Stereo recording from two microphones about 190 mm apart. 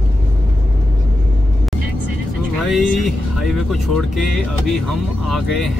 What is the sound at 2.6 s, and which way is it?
Speech, centre (ahead or behind).